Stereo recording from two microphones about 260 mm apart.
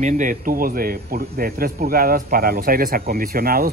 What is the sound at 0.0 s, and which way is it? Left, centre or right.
A man's voice, right.